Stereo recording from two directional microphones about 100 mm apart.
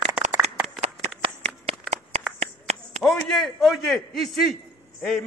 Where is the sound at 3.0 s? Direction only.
5° left (ahead or behind).